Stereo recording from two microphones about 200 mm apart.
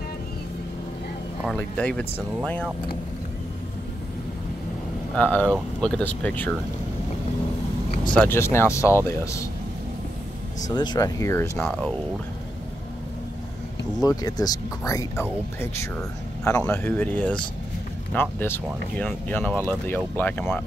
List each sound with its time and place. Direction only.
1.4 s speech: 5° left (ahead or behind)
5.1 s speech: 10° left (ahead or behind)
8.1 s speech: 10° left (ahead or behind)
10.7 s speech: 20° left (ahead or behind)
14.0 s speech: 20° left (ahead or behind)